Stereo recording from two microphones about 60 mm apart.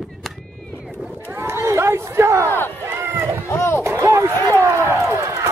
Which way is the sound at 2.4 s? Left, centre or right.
Left.